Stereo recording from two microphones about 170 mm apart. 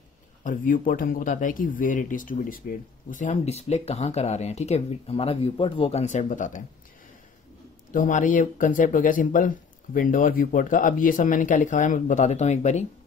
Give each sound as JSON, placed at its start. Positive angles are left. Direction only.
{"t": 0.4, "sound": "speech", "side_deg": 50}
{"t": 7.9, "sound": "speech", "side_deg": 50}